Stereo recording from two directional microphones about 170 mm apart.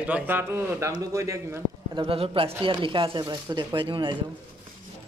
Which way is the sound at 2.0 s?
35° right (ahead or behind).